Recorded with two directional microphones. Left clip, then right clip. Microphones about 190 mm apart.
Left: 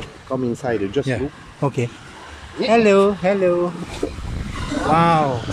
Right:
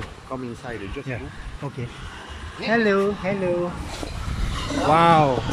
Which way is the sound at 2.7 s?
15° left (ahead or behind).